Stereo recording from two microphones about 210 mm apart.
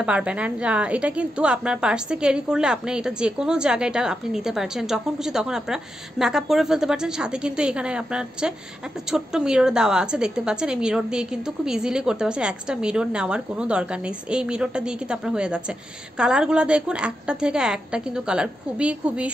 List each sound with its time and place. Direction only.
0.0 s a woman's voice: 5° right (ahead or behind)